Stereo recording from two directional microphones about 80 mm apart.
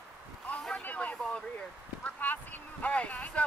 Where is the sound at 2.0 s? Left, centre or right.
Left.